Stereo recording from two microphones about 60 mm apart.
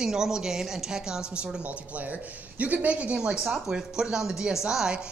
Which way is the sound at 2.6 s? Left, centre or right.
Right.